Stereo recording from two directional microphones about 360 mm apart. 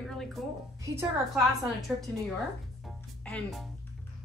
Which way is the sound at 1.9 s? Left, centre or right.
Centre.